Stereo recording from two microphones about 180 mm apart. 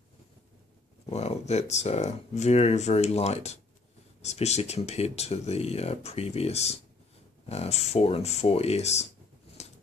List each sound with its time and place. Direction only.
1.0 s speech: 35° left (ahead or behind)
9.6 s scissors: 35° left (ahead or behind)